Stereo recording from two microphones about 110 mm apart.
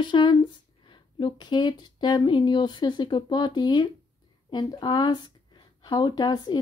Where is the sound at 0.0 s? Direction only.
45° left (ahead or behind).